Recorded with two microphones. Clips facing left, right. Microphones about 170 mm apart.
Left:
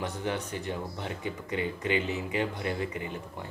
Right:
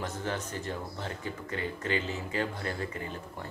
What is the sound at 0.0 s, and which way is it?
Speech, 15° left (ahead or behind).